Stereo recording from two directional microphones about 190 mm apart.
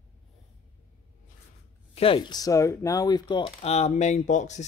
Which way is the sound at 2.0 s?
25° left (ahead or behind).